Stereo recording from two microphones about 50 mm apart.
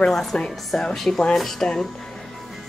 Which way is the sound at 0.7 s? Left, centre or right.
Centre.